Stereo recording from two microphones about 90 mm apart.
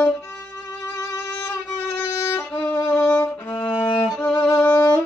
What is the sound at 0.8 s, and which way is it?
Violin, 40° left (ahead or behind).